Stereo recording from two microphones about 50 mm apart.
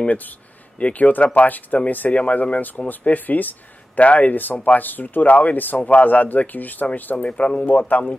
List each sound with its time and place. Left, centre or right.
0.7 s speech: left
7.2 s speech: left